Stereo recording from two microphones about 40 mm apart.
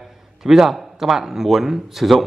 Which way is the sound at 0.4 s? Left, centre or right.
Centre.